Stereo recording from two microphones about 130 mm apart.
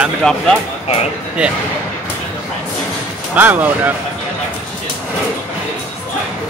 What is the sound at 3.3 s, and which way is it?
Speech, 15° right (ahead or behind).